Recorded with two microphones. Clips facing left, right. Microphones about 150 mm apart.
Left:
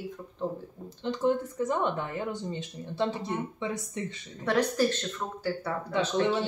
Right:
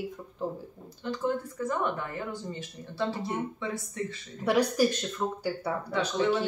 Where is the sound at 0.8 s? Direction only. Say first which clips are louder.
Left 4 dB; 20° left (ahead or behind).